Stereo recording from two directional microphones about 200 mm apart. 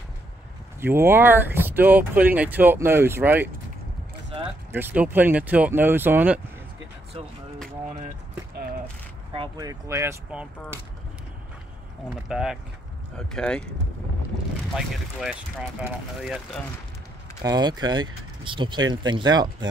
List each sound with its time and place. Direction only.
0.7 s speech: 10° right (ahead or behind)
4.7 s speech: 10° right (ahead or behind)
7.2 s speech: 30° right (ahead or behind)
9.3 s speech: 20° right (ahead or behind)
12.3 s speech: 5° right (ahead or behind)
15.8 s speech: 5° right (ahead or behind)
17.4 s speech: 20° right (ahead or behind)